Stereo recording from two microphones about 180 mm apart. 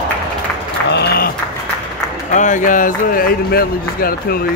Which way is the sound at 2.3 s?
45° left (ahead or behind).